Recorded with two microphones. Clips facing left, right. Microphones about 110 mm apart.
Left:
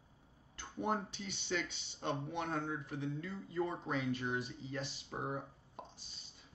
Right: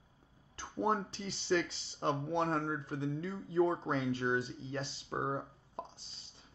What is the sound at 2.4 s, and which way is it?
Speech, 35° right (ahead or behind).